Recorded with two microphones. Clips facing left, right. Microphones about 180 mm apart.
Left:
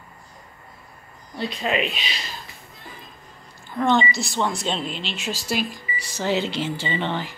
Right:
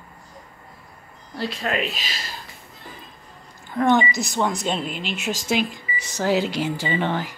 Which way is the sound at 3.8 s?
15° right (ahead or behind).